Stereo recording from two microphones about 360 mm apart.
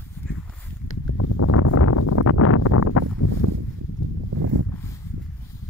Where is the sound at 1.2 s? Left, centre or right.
Left.